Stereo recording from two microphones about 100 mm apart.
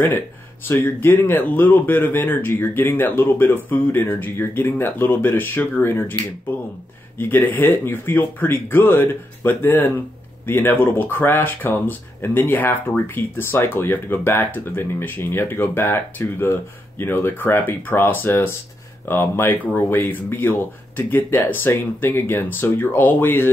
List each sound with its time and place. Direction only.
0.7 s speech: 20° left (ahead or behind)
7.2 s speech: 20° left (ahead or behind)